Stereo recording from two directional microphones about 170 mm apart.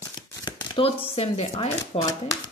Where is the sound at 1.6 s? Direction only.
35° left (ahead or behind).